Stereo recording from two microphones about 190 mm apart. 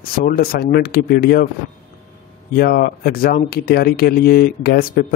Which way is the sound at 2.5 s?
55° left (ahead or behind).